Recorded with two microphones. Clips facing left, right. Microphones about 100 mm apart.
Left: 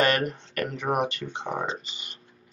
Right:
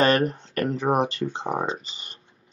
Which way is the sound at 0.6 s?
35° right (ahead or behind).